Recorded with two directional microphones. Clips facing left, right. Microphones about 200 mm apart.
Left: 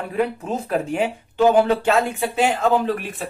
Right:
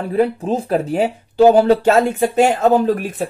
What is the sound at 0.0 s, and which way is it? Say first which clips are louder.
Speech: right 6 dB; 35° right (ahead or behind).